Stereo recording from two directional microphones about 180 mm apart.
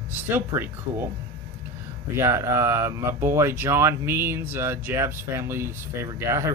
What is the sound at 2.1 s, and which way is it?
Speech, 15° right (ahead or behind).